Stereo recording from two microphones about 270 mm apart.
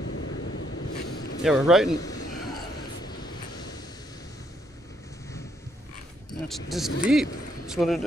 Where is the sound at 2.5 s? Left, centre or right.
Centre.